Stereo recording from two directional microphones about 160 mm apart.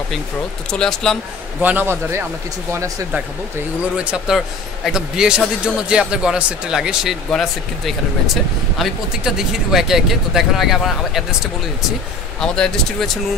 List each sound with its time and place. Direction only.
0.7 s a man's voice: 5° left (ahead or behind)
1.6 s a man's voice: 10° right (ahead or behind)
3.9 s a man's voice: 5° right (ahead or behind)
12.4 s a man's voice: 5° left (ahead or behind)